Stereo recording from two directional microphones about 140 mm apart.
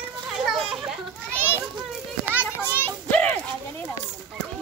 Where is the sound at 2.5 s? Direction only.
15° left (ahead or behind).